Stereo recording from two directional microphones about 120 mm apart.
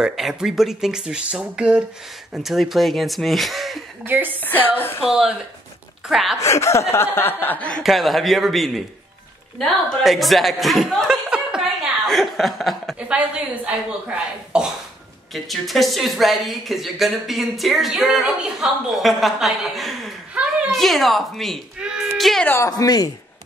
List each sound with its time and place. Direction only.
0.0 s a woman's voice: 5° right (ahead or behind)
4.0 s speech: 15° right (ahead or behind)
4.4 s speech: 15° left (ahead or behind)
5.0 s a woman's voice: 5° right (ahead or behind)
6.4 s a woman's voice: 25° left (ahead or behind); by 11.6 s 5° right (ahead or behind)
12.1 s chuckle: centre (ahead or behind)
13.1 s a woman's voice: 10° right (ahead or behind)
22.7 s speech: 30° left (ahead or behind)